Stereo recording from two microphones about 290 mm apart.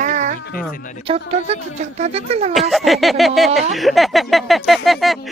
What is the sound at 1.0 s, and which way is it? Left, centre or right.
Speech, right.